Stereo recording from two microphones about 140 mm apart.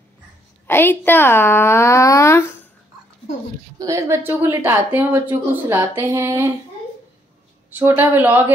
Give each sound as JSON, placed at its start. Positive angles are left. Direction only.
{"t": 0.7, "sound": "a woman's voice", "side_deg": 15}
{"t": 3.7, "sound": "speech", "side_deg": -25}
{"t": 7.8, "sound": "speech", "side_deg": -15}